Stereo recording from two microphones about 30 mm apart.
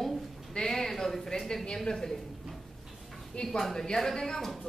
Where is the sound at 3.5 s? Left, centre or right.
Centre.